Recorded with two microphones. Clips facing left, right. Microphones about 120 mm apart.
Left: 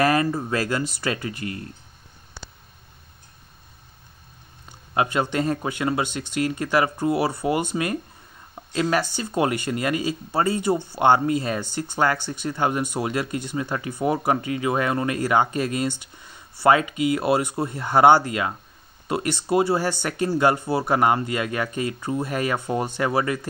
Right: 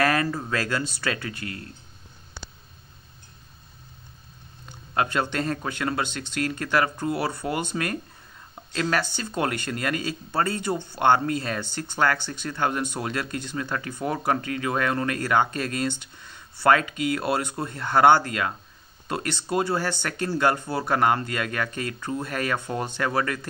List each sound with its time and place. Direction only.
0.0 s speech: 15° left (ahead or behind)
4.9 s speech: 15° left (ahead or behind)